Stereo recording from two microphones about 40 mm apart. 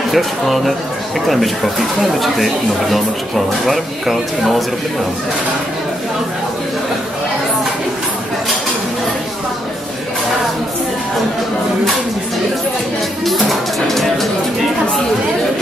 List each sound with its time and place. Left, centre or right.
0.1 s speech: centre
13.2 s music: centre